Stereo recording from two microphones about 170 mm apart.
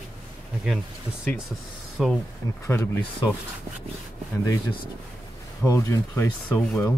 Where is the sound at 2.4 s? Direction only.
15° left (ahead or behind).